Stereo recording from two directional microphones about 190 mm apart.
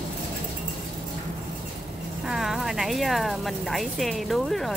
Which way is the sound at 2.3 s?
Centre (ahead or behind).